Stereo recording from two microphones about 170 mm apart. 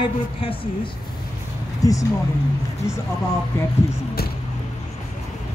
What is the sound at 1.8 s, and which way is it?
Speech, 20° left (ahead or behind).